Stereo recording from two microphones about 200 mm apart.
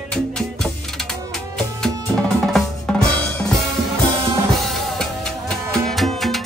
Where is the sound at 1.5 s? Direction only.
5° left (ahead or behind).